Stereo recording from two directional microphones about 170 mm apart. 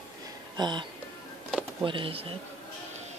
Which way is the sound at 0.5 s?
25° right (ahead or behind).